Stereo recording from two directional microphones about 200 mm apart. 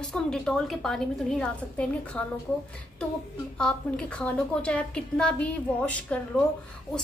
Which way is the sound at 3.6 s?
5° left (ahead or behind).